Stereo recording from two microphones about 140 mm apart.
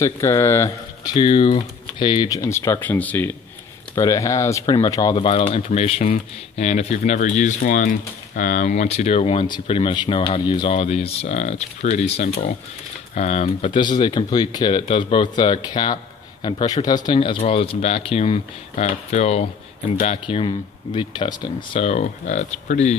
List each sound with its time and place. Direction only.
0.0 s speech: 20° left (ahead or behind)
3.9 s speech: 25° left (ahead or behind)
5.1 s speech: 40° left (ahead or behind)
10.7 s speech: 45° left (ahead or behind)
13.7 s speech: 30° left (ahead or behind)
21.7 s speech: 50° left (ahead or behind)